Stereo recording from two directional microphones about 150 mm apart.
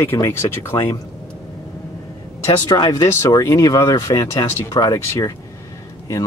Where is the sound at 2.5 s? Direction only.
30° left (ahead or behind).